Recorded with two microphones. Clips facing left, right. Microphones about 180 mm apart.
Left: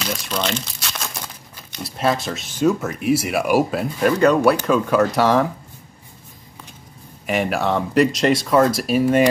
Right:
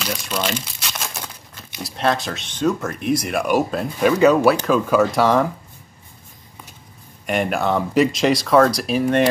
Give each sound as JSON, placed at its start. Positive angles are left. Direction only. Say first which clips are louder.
{"t": 0.0, "sound": "crumpling", "louder": "even", "side_deg": 0}
{"t": 1.8, "sound": "speech", "louder": "even", "side_deg": 0}
{"t": 7.2, "sound": "speech", "louder": "even", "side_deg": 0}